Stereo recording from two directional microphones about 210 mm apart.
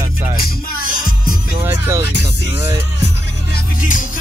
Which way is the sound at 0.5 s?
45° left (ahead or behind).